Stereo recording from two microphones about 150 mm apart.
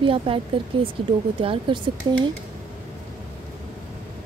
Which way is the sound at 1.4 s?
35° right (ahead or behind).